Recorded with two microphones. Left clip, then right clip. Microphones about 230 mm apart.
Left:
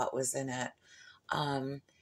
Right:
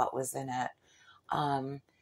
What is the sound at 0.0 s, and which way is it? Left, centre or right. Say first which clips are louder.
A woman's voice: right 2 dB; centre.